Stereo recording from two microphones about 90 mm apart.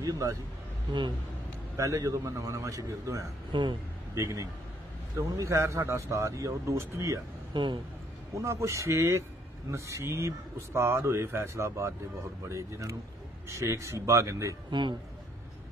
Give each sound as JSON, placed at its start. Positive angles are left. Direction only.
{"t": 0.0, "sound": "speech", "side_deg": -40}
{"t": 1.8, "sound": "speech", "side_deg": -35}
{"t": 3.5, "sound": "a man's voice", "side_deg": -65}
{"t": 4.1, "sound": "a man's voice", "side_deg": -35}
{"t": 7.5, "sound": "a man's voice", "side_deg": -65}
{"t": 8.4, "sound": "speech", "side_deg": -35}
{"t": 14.7, "sound": "a man's voice", "side_deg": -60}